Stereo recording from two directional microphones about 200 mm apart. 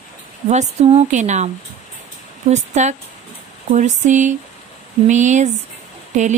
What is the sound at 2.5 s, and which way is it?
Speech, 35° right (ahead or behind).